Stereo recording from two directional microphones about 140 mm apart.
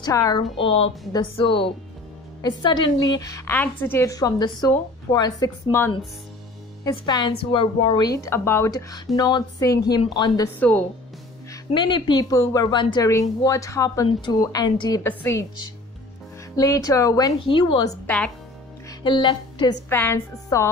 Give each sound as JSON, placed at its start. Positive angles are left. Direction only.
{"t": 0.0, "sound": "a woman's voice", "side_deg": 25}
{"t": 0.6, "sound": "a woman's voice", "side_deg": 45}
{"t": 10.6, "sound": "a woman's voice", "side_deg": 10}
{"t": 11.7, "sound": "a woman's voice", "side_deg": 35}
{"t": 15.0, "sound": "a woman's voice", "side_deg": 20}
{"t": 16.5, "sound": "a woman's voice", "side_deg": 25}
{"t": 17.5, "sound": "a woman's voice", "side_deg": 35}
{"t": 18.0, "sound": "a woman's voice", "side_deg": 5}
{"t": 19.0, "sound": "a woman's voice", "side_deg": 30}
{"t": 19.9, "sound": "a woman's voice", "side_deg": 15}